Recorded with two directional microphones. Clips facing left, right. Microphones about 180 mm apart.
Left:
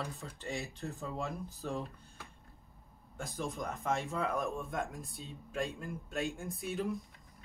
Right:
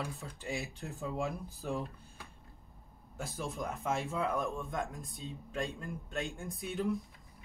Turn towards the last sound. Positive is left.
turn(degrees=0)  # may be behind; listen again after turning